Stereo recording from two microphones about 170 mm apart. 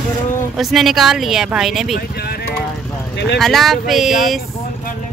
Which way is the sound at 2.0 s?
65° left (ahead or behind).